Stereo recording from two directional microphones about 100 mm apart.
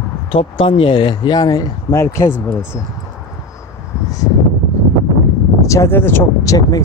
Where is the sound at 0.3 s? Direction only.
65° left (ahead or behind); by 2.3 s 30° left (ahead or behind).